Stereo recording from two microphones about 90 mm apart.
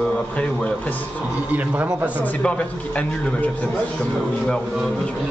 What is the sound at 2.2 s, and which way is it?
A man's voice, 15° left (ahead or behind).